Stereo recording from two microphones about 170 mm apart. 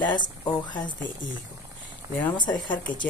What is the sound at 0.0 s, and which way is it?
Speech, 25° left (ahead or behind).